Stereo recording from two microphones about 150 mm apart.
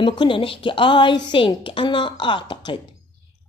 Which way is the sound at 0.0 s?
35° left (ahead or behind).